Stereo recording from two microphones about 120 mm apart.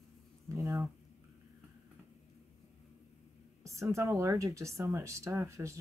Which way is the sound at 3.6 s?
25° right (ahead or behind).